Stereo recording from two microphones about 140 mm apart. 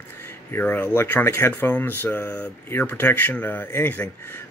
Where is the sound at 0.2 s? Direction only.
15° left (ahead or behind).